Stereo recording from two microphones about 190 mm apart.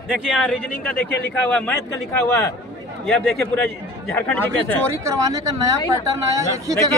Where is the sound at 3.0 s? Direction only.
Centre (ahead or behind).